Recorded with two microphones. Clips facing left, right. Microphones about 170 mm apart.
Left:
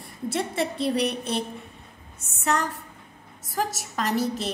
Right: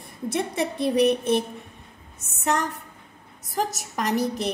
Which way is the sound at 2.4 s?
15° right (ahead or behind).